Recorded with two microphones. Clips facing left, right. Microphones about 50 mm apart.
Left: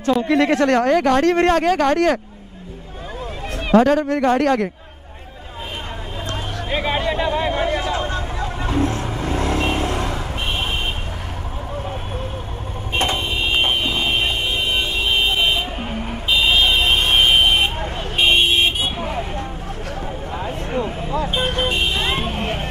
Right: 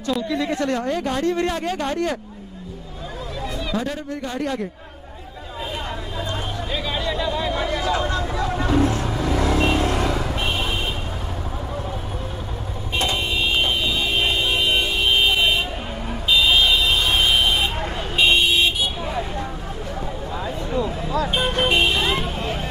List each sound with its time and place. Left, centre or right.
0.3 s speech: left
3.7 s speech: left
6.3 s a sound: left
8.6 s vehicle: left
12.9 s vehicle: left
20.3 s a sound: left
21.5 s speech: right
21.9 s vehicle: left